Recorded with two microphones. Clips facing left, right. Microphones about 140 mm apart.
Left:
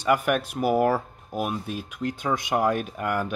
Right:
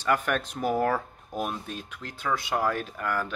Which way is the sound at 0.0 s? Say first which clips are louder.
Left 4 dB; 10° left (ahead or behind).